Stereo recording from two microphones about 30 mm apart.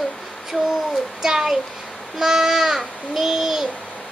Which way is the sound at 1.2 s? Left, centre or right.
Right.